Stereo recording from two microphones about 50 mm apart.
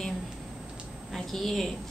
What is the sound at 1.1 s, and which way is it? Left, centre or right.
Speech, centre.